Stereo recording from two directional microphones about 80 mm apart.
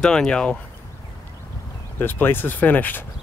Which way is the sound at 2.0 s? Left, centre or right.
Left.